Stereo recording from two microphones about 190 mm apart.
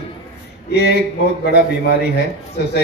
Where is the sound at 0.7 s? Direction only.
60° left (ahead or behind).